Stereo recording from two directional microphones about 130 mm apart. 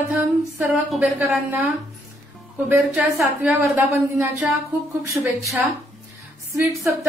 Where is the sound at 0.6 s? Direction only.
5° right (ahead or behind).